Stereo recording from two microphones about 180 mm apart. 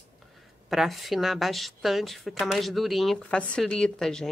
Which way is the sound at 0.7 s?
Centre (ahead or behind).